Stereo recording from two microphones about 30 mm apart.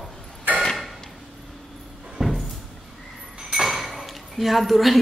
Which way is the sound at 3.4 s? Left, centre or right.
Right.